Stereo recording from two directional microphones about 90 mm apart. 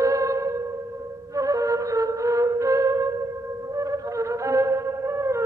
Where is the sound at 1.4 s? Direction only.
40° right (ahead or behind).